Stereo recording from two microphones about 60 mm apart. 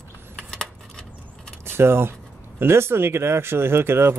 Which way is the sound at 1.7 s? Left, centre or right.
Right.